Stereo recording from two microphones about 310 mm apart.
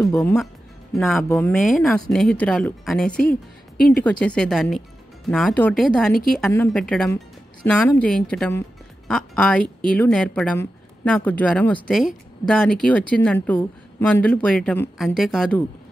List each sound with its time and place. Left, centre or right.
0.0 s a woman's voice: centre
6.1 s a woman's voice: left
6.4 s a woman's voice: centre